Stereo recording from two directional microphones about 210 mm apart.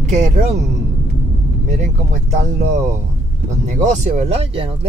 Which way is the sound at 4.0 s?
30° right (ahead or behind).